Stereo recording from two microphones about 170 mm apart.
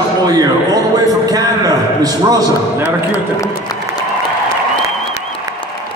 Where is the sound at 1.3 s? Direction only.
20° right (ahead or behind).